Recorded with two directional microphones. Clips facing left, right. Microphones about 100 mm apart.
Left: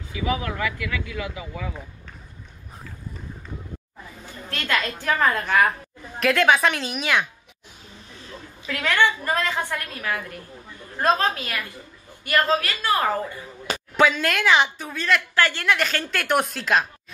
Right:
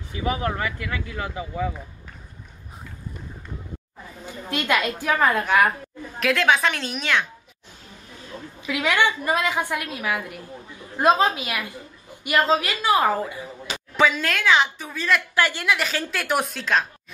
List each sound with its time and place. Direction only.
0.2 s speech: 35° right (ahead or behind)
4.3 s a woman's voice: 15° right (ahead or behind); by 7.2 s 5° left (ahead or behind)
8.6 s a woman's voice: 10° right (ahead or behind)
13.9 s a woman's voice: centre (ahead or behind)